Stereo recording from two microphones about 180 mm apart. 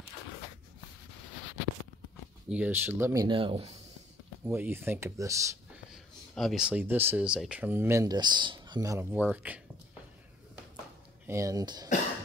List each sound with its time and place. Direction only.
2.5 s speech: 10° right (ahead or behind); by 3.7 s 30° right (ahead or behind)
4.5 s speech: 10° right (ahead or behind)
6.3 s speech: centre (ahead or behind)
11.2 s speech: 15° right (ahead or behind)